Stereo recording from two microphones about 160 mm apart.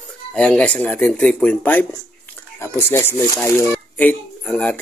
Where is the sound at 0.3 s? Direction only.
5° left (ahead or behind).